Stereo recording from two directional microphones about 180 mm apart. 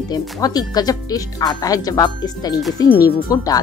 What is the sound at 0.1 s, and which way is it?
Speech, 20° left (ahead or behind).